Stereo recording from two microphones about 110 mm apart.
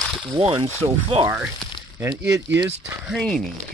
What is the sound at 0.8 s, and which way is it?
Speech, 60° right (ahead or behind).